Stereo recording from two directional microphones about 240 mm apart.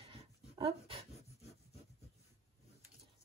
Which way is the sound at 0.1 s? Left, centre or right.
Right.